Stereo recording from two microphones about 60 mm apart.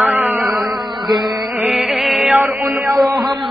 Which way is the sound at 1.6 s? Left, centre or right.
Centre.